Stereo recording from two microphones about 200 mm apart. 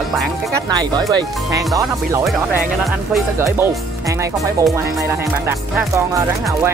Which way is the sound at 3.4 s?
15° right (ahead or behind).